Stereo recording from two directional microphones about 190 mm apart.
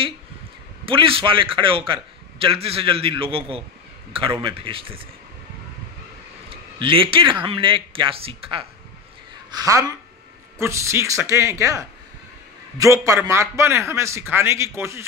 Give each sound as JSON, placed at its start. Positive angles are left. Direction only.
{"t": 0.8, "sound": "a man's voice", "side_deg": -30}
{"t": 6.5, "sound": "a man's voice", "side_deg": -25}
{"t": 9.5, "sound": "a man's voice", "side_deg": -20}